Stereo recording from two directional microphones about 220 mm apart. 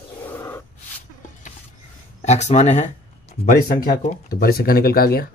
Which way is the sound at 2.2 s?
30° left (ahead or behind).